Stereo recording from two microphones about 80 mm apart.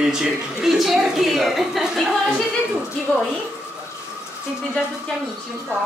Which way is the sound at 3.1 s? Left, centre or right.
Centre.